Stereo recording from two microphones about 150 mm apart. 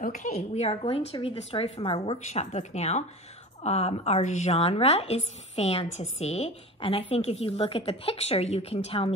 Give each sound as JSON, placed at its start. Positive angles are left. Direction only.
{"t": 0.0, "sound": "a woman's voice", "side_deg": 55}